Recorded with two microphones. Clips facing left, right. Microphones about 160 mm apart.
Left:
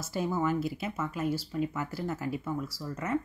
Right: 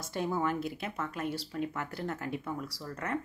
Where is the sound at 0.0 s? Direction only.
5° left (ahead or behind).